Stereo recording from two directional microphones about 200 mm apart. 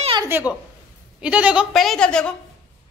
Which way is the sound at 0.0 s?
25° right (ahead or behind).